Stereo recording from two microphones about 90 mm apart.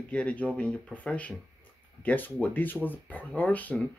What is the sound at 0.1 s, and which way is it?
Speech, 15° left (ahead or behind).